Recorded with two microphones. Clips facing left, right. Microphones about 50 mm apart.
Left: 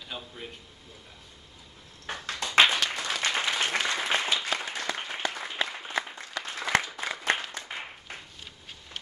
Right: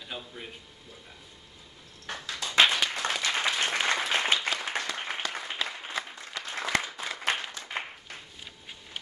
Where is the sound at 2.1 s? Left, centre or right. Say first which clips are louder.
Left 1 dB; left.